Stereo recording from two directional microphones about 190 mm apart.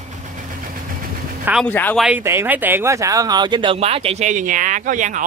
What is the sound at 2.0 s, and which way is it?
Speech, 10° right (ahead or behind).